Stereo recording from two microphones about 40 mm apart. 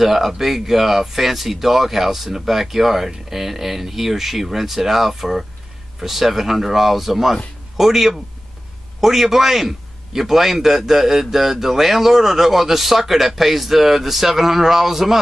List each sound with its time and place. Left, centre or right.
0.0 s a man's voice: centre